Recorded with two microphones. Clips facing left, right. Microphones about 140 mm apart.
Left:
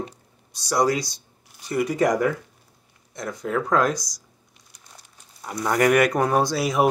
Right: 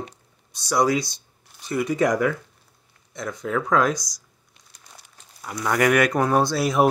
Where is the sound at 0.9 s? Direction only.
40° left (ahead or behind).